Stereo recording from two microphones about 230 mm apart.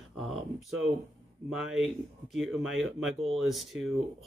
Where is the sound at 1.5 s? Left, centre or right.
Centre.